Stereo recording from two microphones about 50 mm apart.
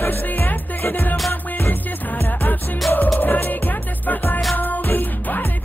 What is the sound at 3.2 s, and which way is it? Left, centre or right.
Music, left.